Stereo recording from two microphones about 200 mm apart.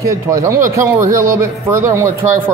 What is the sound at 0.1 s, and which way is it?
Speech, 15° right (ahead or behind).